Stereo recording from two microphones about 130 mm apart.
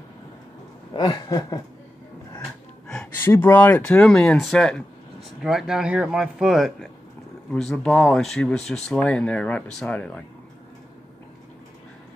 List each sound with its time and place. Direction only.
0.9 s chuckle: 30° left (ahead or behind)
2.9 s speech: 10° left (ahead or behind)